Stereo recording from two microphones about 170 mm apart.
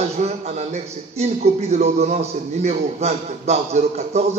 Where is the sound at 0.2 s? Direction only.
40° right (ahead or behind).